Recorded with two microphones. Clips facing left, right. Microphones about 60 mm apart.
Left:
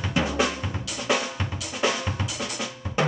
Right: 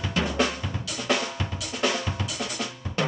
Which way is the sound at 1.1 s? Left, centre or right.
Centre.